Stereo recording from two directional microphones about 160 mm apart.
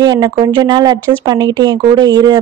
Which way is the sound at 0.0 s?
25° right (ahead or behind).